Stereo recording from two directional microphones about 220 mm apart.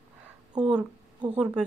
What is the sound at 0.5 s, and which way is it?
Speech, 5° right (ahead or behind).